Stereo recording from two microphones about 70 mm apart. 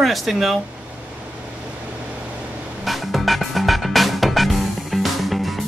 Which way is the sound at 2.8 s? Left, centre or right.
Centre.